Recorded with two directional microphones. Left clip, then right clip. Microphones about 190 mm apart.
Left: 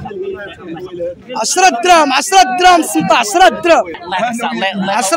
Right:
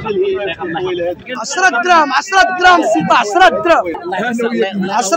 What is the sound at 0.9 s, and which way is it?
A man's voice, 45° left (ahead or behind).